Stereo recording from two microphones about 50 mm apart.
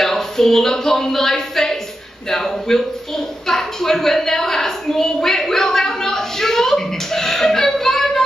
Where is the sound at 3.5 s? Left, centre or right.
Centre.